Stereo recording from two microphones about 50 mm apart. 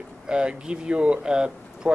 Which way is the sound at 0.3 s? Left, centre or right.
Centre.